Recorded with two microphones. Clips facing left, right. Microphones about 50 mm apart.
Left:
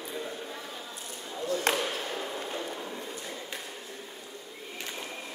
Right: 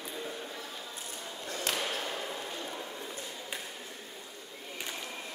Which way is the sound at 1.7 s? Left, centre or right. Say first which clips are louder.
Left 6 dB; left.